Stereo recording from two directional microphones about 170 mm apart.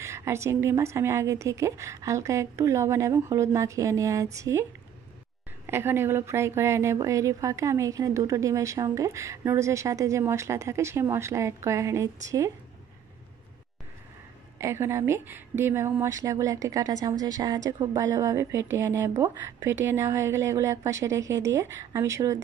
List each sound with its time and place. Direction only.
0.0 s a woman's voice: 15° right (ahead or behind)
5.7 s a woman's voice: 15° right (ahead or behind)
14.6 s a woman's voice: 15° right (ahead or behind)